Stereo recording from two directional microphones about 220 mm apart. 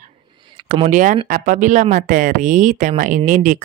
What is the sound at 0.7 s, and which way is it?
Speech, 35° right (ahead or behind).